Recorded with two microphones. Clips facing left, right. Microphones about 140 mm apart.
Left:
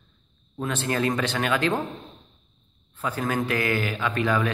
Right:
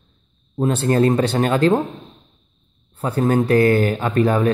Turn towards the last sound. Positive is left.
turn(degrees=-40)  # may be behind; listen again after turning